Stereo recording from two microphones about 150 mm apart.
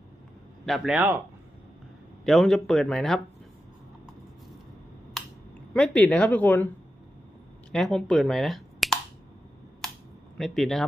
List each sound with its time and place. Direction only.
0.7 s speech: 5° right (ahead or behind)
2.2 s speech: centre (ahead or behind)
5.2 s a sound: centre (ahead or behind)
5.7 s a woman's voice: 5° left (ahead or behind)
7.7 s speech: 5° left (ahead or behind)
10.3 s speech: centre (ahead or behind)